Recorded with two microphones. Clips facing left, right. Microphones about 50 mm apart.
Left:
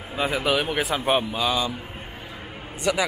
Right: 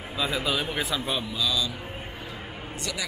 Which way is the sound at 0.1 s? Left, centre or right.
Left.